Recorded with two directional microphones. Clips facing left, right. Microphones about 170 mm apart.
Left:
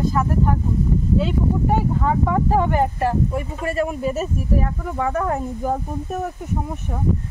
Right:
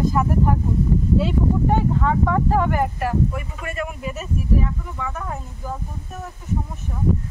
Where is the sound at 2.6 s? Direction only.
25° left (ahead or behind); by 5.7 s 60° left (ahead or behind).